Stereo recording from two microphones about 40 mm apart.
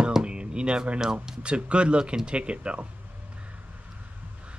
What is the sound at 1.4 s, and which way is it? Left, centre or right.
Speech, right.